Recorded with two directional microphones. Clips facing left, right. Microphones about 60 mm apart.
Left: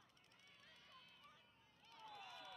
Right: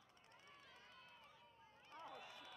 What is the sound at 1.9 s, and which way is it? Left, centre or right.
Run, right.